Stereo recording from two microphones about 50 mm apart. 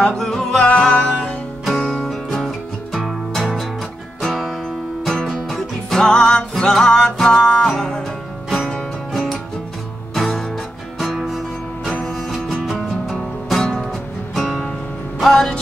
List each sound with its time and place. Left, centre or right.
0.0 s music: centre
0.7 s music: left
2.0 s music: centre
8.5 s music: centre